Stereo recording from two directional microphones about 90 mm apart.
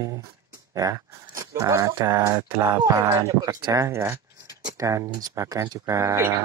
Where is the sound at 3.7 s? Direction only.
30° right (ahead or behind).